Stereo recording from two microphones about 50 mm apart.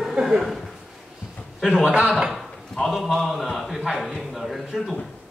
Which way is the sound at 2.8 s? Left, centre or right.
Centre.